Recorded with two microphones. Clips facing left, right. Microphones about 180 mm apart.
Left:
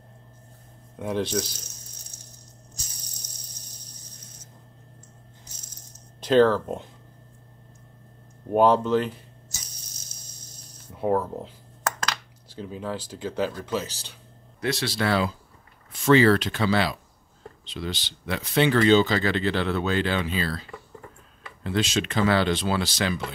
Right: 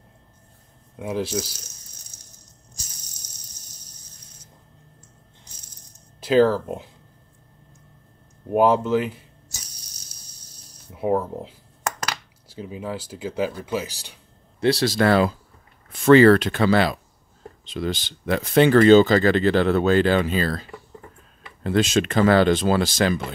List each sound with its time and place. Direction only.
0.9 s speech: 5° right (ahead or behind)
6.2 s speech: 5° right (ahead or behind)
8.5 s speech: 5° right (ahead or behind)
10.9 s speech: 10° right (ahead or behind)
14.6 s speech: 35° right (ahead or behind)
21.6 s speech: 50° right (ahead or behind)